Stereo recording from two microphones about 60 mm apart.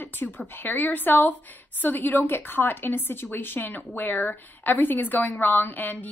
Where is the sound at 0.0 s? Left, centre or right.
Left.